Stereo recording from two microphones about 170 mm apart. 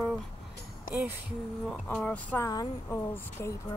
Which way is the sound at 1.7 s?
5° left (ahead or behind).